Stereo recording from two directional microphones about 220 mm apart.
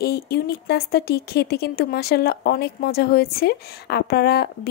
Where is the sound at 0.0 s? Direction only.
45° left (ahead or behind).